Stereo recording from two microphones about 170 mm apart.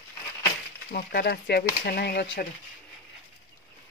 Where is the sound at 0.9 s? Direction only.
70° left (ahead or behind).